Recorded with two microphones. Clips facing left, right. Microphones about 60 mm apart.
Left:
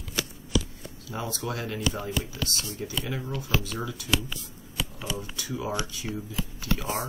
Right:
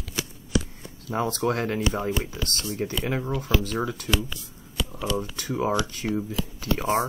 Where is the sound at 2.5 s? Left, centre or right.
Right.